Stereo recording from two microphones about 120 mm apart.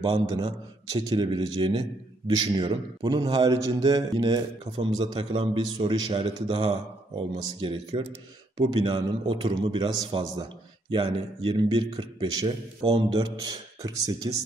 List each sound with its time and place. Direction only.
0.0 s a man's voice: 45° right (ahead or behind)
9.7 s a man's voice: 40° right (ahead or behind)